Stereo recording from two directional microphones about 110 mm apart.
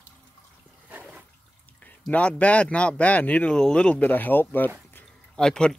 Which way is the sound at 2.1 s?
15° left (ahead or behind).